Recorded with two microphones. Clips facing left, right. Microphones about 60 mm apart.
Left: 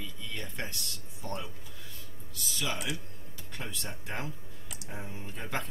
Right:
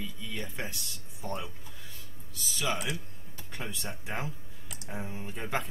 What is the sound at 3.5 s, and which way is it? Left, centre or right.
Speech, centre.